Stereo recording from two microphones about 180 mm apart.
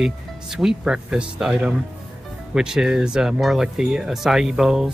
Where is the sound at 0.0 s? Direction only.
Centre (ahead or behind).